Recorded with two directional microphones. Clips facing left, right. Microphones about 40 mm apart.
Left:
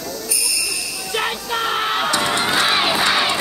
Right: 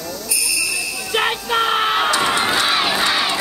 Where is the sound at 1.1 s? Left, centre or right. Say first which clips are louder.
Right 4 dB; right.